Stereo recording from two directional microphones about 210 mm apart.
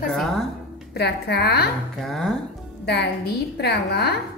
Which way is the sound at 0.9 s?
50° left (ahead or behind).